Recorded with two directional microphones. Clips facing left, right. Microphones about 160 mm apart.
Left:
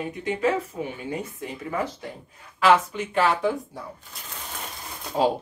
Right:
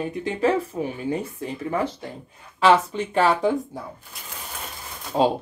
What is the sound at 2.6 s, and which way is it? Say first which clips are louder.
Speech: right 2 dB; 30° right (ahead or behind).